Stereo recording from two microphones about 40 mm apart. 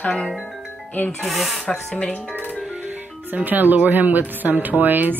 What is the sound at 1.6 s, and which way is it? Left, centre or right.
Speech, centre.